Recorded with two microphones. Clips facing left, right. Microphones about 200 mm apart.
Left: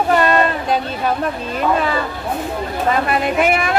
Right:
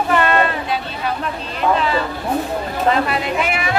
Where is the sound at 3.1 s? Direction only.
50° left (ahead or behind).